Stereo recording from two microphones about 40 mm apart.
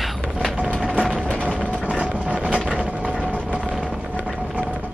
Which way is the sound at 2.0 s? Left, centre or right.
Right.